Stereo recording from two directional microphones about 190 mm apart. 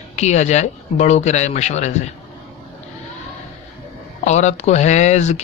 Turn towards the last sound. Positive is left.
turn(degrees=35)  # may be behind; listen again after turning